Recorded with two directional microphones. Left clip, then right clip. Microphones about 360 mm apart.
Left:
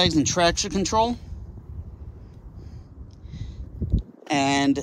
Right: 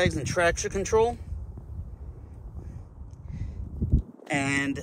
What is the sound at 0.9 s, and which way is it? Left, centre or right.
Speech, left.